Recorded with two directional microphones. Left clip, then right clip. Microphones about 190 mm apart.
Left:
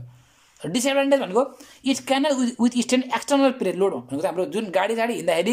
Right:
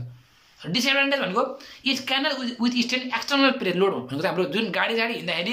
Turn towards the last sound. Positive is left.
turn(degrees=35)  # may be behind; listen again after turning